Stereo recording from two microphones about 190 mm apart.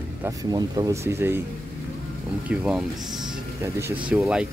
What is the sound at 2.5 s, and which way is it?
Speech, 5° right (ahead or behind).